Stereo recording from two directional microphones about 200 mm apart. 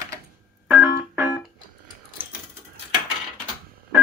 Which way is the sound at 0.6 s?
10° right (ahead or behind).